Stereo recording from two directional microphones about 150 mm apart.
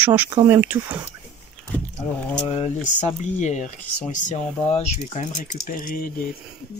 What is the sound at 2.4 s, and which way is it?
Speech, 45° left (ahead or behind).